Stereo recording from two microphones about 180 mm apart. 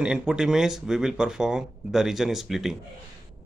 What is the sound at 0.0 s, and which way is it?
Speech, 5° right (ahead or behind).